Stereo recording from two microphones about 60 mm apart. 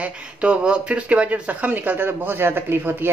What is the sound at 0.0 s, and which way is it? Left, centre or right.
Speech, centre.